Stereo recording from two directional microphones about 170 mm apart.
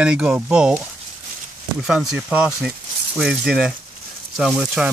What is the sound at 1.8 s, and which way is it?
Speech, 5° right (ahead or behind).